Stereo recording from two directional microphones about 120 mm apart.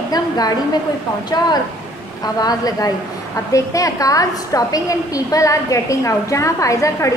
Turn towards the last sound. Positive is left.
turn(degrees=25)  # may be behind; listen again after turning